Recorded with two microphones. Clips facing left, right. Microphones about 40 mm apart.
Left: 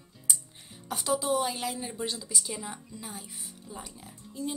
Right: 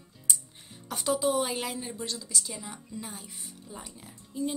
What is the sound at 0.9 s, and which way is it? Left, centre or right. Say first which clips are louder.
Speech: right 1 dB; centre.